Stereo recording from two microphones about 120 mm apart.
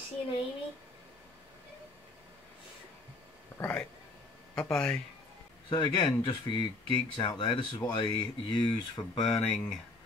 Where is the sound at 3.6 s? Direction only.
25° left (ahead or behind).